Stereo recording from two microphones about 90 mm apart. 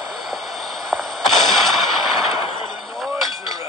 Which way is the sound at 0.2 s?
Centre (ahead or behind).